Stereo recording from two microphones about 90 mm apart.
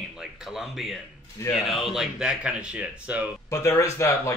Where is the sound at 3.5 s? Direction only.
35° left (ahead or behind).